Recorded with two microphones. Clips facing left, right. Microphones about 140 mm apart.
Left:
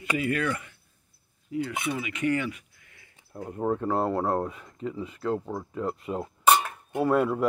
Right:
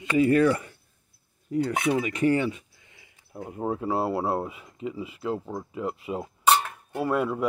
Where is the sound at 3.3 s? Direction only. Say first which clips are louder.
Left 2 dB; 10° right (ahead or behind).